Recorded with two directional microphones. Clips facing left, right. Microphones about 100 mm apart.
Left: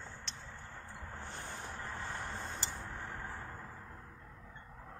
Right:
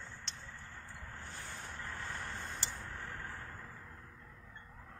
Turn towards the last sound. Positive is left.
turn(degrees=20)  # may be behind; listen again after turning